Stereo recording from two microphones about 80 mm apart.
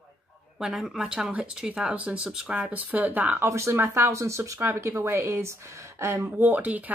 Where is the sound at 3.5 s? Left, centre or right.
Right.